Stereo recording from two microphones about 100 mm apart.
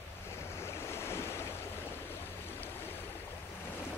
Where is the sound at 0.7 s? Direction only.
25° left (ahead or behind).